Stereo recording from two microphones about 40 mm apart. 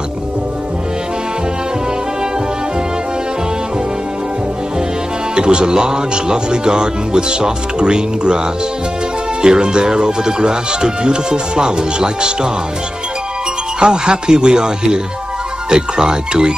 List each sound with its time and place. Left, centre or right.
5.3 s speech: right
9.4 s speech: right
13.7 s speech: centre